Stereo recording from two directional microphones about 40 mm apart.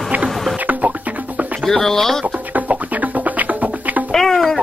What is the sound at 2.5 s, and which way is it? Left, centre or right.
Music, right.